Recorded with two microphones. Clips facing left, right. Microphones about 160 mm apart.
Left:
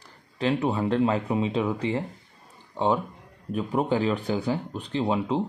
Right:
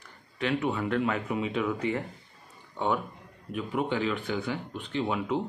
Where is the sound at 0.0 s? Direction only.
35° left (ahead or behind).